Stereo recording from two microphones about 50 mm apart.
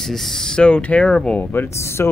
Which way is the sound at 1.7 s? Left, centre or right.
Left.